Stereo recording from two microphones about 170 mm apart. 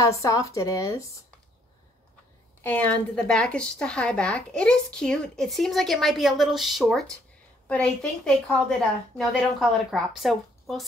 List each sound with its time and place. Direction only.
0.0 s speech: 20° left (ahead or behind)
2.6 s a woman's voice: 10° left (ahead or behind)